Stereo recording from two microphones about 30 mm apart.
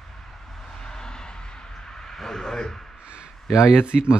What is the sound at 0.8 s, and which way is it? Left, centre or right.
Vehicle, left.